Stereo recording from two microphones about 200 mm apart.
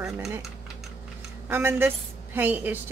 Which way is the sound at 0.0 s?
Centre (ahead or behind).